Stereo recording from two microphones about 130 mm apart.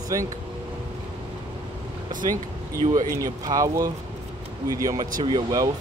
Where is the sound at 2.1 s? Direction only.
90° right.